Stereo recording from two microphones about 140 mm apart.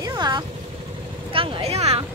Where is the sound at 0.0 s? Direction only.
30° right (ahead or behind).